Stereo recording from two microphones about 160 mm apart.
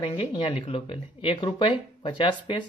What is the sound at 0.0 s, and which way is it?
Speech, 30° left (ahead or behind).